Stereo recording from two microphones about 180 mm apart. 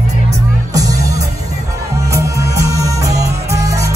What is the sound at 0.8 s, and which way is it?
Music, 20° right (ahead or behind).